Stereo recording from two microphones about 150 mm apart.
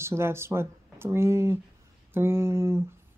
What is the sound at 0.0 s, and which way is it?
Speech, 15° right (ahead or behind).